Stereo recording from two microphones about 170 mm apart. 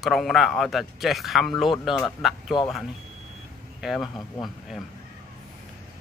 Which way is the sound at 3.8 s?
Centre (ahead or behind).